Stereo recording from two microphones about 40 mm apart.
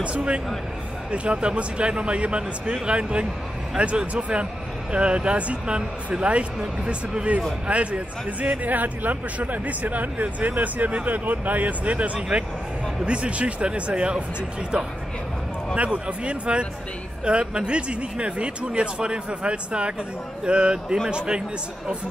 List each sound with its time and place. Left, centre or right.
0.0 s speech: right
8.6 s speech: right
15.7 s speech: right